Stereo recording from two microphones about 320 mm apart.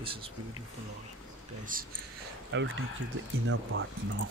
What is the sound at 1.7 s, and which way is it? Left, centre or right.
Speech, right.